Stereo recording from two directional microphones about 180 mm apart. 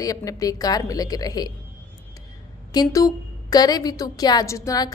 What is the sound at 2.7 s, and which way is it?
A woman's voice, 20° left (ahead or behind).